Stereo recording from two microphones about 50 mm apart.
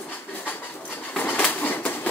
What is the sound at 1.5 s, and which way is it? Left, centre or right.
Train, left.